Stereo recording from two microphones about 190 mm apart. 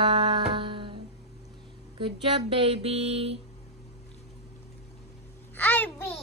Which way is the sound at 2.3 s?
25° right (ahead or behind).